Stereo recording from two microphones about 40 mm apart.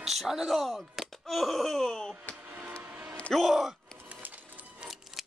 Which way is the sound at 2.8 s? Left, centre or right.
Right.